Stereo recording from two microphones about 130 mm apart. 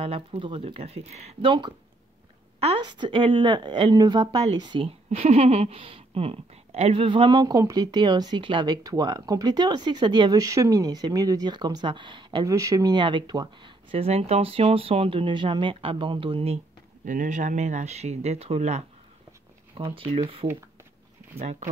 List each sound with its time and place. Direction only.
0.0 s speech: 45° right (ahead or behind)
2.8 s speech: 35° right (ahead or behind)
12.4 s speech: 25° right (ahead or behind); by 16.5 s 45° right (ahead or behind)
17.0 s speech: 90° right; by 18.9 s 60° right (ahead or behind)
19.8 s speech: 45° right (ahead or behind)
21.4 s speech: 60° right (ahead or behind)